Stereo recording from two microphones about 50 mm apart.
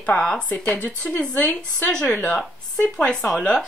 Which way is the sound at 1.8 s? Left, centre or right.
Left.